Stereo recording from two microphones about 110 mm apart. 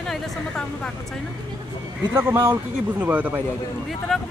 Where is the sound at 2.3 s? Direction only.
20° right (ahead or behind).